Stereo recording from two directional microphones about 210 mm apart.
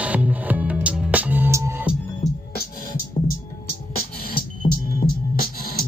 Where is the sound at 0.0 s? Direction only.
5° right (ahead or behind).